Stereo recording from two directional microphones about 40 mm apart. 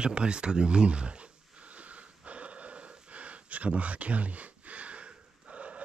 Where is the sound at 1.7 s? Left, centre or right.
Right.